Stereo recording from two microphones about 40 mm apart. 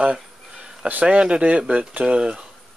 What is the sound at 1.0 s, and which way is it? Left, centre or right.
Speech, right.